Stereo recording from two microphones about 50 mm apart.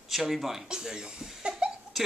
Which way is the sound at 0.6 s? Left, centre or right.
Centre.